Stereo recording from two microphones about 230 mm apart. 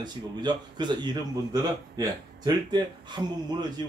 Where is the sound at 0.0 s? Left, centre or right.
Centre.